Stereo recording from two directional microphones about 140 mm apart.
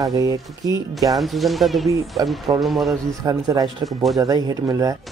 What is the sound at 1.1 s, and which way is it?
Speech, centre (ahead or behind).